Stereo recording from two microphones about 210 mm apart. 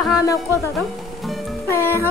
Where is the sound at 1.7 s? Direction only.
10° left (ahead or behind).